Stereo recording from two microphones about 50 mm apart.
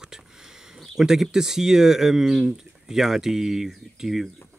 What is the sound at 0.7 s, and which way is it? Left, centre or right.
Speech, centre.